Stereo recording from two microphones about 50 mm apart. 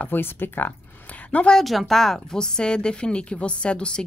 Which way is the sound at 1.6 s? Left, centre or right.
Centre.